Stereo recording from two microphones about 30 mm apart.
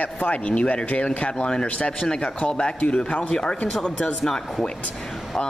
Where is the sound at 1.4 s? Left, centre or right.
Left.